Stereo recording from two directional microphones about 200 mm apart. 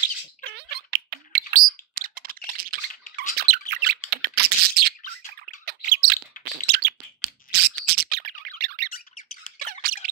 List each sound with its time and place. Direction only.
0.4 s a sound: 55° right (ahead or behind)
3.3 s squeak: 50° right (ahead or behind)
4.1 s computer keyboard: 55° right (ahead or behind)
5.4 s squawk: 50° right (ahead or behind)
6.4 s bird: 50° right (ahead or behind)
8.9 s squawk: 40° left (ahead or behind)
9.6 s squeak: 45° right (ahead or behind)